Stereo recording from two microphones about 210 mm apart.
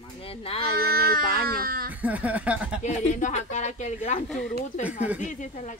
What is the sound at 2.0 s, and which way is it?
Speech, 5° right (ahead or behind).